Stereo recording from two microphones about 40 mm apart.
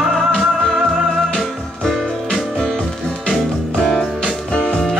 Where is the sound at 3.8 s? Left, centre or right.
Centre.